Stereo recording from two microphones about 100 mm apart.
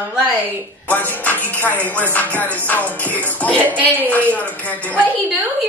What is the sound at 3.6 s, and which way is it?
Speech, 15° right (ahead or behind).